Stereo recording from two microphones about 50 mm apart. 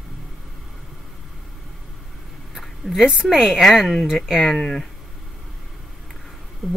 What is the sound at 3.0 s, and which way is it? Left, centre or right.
Speech, centre.